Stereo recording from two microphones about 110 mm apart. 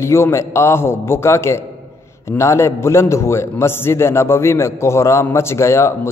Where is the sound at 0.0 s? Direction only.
25° left (ahead or behind).